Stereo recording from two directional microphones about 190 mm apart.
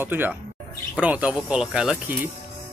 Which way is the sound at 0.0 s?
10° right (ahead or behind).